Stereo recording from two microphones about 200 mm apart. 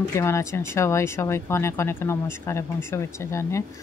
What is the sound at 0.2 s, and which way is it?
Speech, 15° left (ahead or behind).